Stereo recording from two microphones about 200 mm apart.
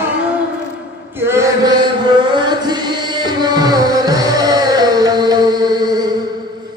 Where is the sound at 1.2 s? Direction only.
15° right (ahead or behind).